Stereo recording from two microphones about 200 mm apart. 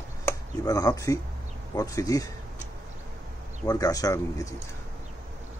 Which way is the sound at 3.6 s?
20° left (ahead or behind).